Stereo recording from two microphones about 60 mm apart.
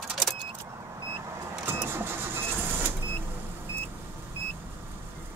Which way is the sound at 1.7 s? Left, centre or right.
Right.